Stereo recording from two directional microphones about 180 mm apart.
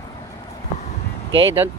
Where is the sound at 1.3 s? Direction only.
90° right.